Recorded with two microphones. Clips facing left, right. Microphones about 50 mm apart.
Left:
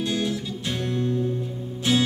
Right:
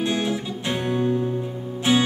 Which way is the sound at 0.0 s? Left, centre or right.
Right.